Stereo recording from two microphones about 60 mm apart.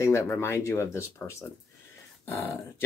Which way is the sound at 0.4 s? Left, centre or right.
Left.